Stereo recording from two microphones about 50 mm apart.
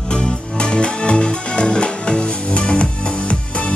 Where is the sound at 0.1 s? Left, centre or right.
Centre.